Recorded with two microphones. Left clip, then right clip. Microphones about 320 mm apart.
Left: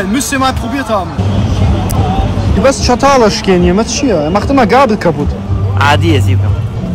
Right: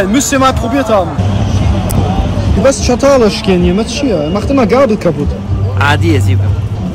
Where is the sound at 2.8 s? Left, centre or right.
Centre.